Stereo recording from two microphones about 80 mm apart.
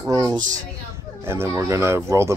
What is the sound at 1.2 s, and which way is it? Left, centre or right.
Speech, right.